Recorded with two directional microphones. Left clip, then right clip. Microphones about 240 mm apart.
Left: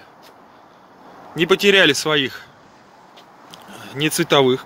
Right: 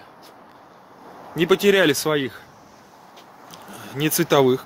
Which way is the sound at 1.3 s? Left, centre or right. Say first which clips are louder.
Left 3 dB; centre.